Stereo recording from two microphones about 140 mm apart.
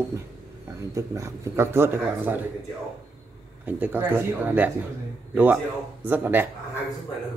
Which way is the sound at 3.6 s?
15° right (ahead or behind).